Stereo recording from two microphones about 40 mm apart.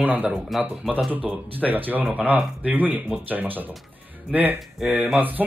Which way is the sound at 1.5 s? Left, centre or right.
Right.